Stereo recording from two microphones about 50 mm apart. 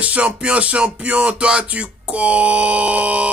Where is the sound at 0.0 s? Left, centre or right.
Right.